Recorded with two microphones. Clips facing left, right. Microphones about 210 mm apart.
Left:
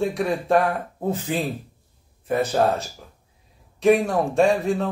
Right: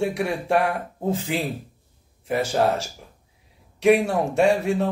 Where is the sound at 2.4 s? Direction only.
10° right (ahead or behind).